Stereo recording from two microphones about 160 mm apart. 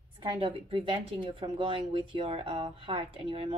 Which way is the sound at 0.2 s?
35° right (ahead or behind).